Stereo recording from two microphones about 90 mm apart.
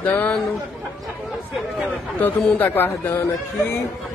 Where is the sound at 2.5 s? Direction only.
20° left (ahead or behind).